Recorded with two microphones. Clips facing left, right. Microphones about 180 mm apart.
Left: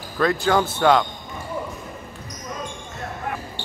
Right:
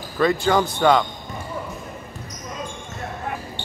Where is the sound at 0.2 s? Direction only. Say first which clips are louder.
Right 1 dB; centre (ahead or behind).